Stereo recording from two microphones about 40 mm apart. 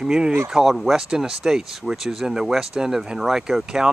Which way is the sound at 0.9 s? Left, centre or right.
Centre.